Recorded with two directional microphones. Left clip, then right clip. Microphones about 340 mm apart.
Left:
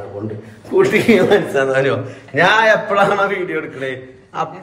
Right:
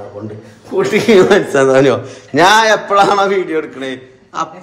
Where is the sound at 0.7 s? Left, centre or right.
Right.